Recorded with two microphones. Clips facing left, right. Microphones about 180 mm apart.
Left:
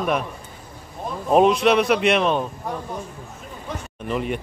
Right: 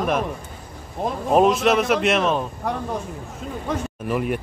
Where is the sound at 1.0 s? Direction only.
90° right.